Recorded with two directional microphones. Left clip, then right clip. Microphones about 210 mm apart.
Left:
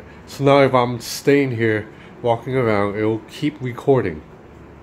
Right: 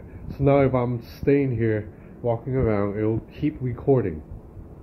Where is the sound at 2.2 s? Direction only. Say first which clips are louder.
Left 6 dB; 25° left (ahead or behind).